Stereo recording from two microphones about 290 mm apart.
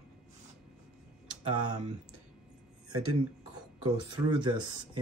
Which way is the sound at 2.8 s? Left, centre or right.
Right.